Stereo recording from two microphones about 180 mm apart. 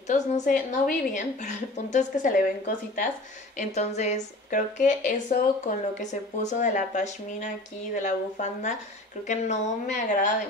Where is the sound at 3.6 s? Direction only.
40° left (ahead or behind).